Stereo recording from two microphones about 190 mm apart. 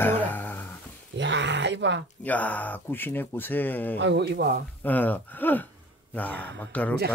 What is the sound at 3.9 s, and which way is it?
Speech, 65° right (ahead or behind).